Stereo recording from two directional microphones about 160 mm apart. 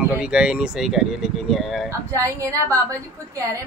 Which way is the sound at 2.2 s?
20° right (ahead or behind).